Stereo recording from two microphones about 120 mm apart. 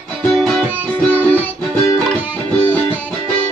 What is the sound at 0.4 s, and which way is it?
Music, 10° left (ahead or behind).